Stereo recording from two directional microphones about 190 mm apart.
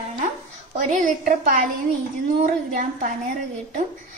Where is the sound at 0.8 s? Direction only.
40° right (ahead or behind).